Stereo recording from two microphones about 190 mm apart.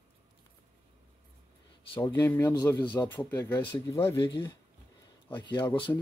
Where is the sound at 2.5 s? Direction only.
20° left (ahead or behind).